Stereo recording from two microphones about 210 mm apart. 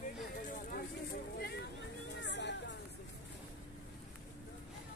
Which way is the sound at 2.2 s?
55° left (ahead or behind).